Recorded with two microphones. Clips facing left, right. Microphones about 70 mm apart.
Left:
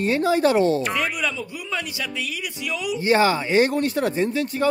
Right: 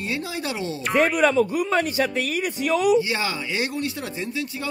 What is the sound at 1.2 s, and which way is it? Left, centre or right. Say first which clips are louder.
A man's voice: right 9 dB; right.